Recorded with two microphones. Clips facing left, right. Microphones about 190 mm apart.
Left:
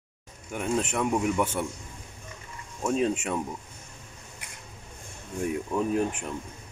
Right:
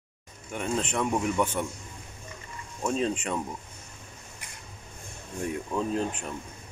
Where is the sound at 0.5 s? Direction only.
10° left (ahead or behind).